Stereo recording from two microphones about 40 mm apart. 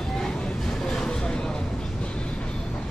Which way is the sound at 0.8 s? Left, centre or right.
Centre.